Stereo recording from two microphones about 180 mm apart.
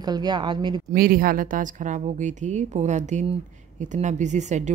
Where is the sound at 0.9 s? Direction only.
55° right (ahead or behind).